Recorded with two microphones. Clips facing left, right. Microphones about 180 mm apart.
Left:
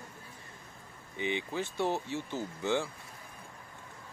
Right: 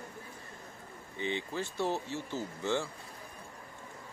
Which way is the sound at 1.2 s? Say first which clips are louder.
Left 1 dB; 15° left (ahead or behind).